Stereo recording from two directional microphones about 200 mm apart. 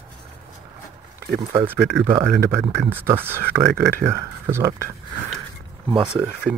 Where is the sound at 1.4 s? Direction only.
15° right (ahead or behind).